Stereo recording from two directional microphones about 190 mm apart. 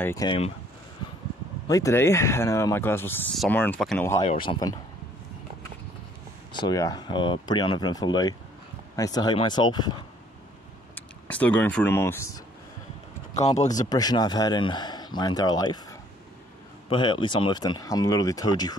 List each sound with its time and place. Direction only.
0.0 s speech: 20° left (ahead or behind)
1.7 s speech: 15° left (ahead or behind)
4.2 s speech: 30° left (ahead or behind)
6.5 s speech: 20° left (ahead or behind)
11.0 s speech: 10° left (ahead or behind)
13.3 s speech: 35° left (ahead or behind)
13.8 s speech: 20° left (ahead or behind)